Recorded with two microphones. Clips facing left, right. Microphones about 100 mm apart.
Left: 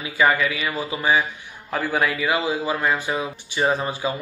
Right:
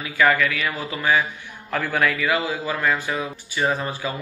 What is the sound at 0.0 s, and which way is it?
Speech, 15° left (ahead or behind).